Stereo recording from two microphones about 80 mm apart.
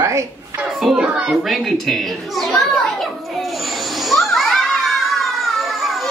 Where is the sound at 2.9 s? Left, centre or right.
Centre.